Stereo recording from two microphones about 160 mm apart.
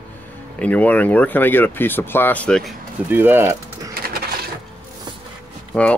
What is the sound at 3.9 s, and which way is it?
Sewing machine, 70° right (ahead or behind).